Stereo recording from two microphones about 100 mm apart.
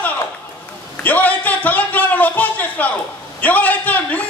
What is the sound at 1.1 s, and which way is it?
A man's voice, 15° left (ahead or behind).